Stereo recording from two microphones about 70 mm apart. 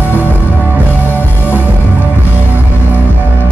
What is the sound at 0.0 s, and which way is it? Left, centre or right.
Music, left.